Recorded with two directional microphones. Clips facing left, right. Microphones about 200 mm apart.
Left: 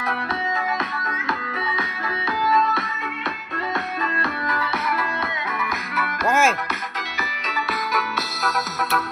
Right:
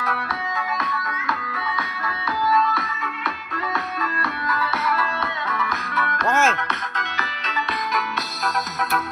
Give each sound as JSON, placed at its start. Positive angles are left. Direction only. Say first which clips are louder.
{"t": 0.0, "sound": "music", "louder": "left 2 dB", "side_deg": 20}
{"t": 4.2, "sound": "music", "louder": "even", "side_deg": 20}